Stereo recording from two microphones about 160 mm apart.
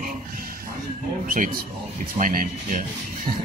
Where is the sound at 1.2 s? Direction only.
55° right (ahead or behind).